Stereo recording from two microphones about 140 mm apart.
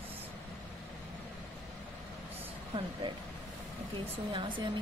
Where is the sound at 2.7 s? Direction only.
35° right (ahead or behind).